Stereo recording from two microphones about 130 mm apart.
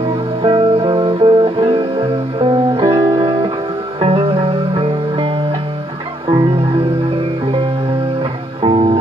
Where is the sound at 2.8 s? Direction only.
25° right (ahead or behind).